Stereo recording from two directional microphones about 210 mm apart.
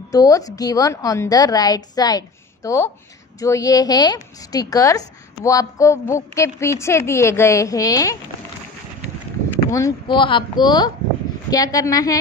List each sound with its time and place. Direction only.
0.1 s a woman's voice: 15° left (ahead or behind)
9.7 s a woman's voice: 15° left (ahead or behind)